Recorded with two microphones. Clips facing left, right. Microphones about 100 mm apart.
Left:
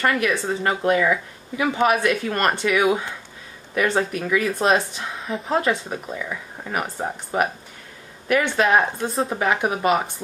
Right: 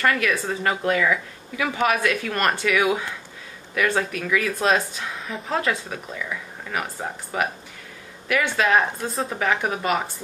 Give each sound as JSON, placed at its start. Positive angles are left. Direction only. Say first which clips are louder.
{"t": 0.0, "sound": "speech", "louder": "left 1 dB", "side_deg": 20}
{"t": 5.9, "sound": "speech", "louder": "left 2 dB", "side_deg": 20}